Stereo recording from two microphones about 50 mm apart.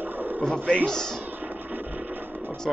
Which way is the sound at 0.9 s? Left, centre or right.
Centre.